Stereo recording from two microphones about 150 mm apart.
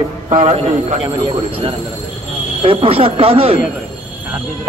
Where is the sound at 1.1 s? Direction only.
30° right (ahead or behind).